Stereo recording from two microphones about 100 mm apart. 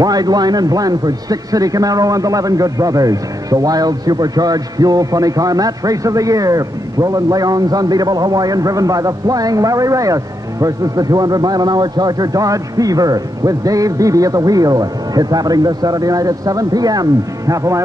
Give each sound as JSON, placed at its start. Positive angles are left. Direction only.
{"t": 0.0, "sound": "speech", "side_deg": -40}